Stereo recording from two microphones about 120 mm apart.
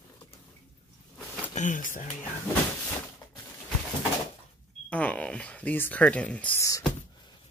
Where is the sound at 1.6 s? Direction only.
90° left.